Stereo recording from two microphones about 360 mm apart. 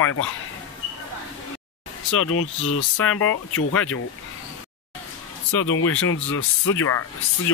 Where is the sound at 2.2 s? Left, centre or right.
Left.